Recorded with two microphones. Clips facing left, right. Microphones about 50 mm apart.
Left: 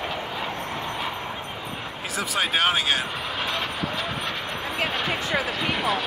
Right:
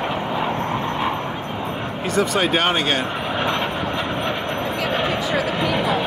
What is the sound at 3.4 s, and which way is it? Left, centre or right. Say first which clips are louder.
Vehicle: right 6 dB; centre.